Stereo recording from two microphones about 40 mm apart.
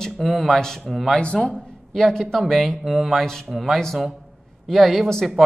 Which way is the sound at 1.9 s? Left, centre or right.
Centre.